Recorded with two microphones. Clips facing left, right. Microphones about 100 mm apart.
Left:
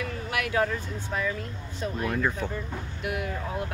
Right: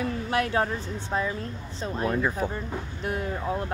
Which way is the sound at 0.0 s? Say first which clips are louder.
Right 4 dB; 30° right (ahead or behind).